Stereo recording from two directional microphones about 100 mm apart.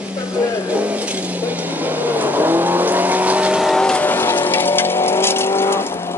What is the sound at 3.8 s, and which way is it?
Vehicle, 10° left (ahead or behind).